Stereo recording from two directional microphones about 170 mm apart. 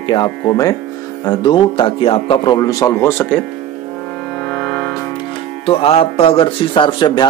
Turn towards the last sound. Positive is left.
turn(degrees=25)  # may be behind; listen again after turning